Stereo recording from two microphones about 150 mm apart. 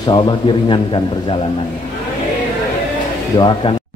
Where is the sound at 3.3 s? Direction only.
30° left (ahead or behind).